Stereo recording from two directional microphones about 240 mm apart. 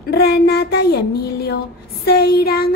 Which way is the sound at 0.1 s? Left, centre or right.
Left.